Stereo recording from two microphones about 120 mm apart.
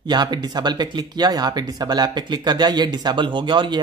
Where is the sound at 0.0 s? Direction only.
35° right (ahead or behind).